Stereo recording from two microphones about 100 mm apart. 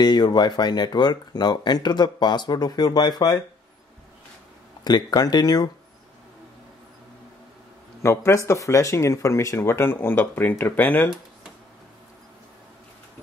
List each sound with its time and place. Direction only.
0.0 s speech: 45° left (ahead or behind)
4.8 s speech: 45° left (ahead or behind)
8.0 s speech: 25° left (ahead or behind)